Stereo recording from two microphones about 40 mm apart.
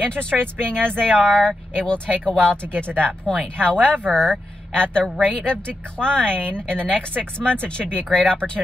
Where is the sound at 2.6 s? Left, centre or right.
Right.